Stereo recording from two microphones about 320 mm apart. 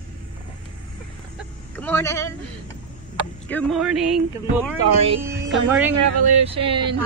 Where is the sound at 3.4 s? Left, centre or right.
Centre.